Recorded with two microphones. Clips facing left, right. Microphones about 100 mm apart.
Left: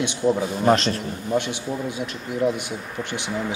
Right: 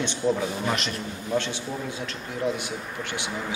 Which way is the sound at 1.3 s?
15° left (ahead or behind).